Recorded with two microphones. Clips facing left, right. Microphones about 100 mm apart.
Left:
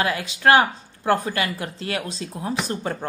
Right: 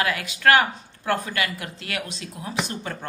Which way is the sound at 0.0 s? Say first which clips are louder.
Left 1 dB; 30° left (ahead or behind).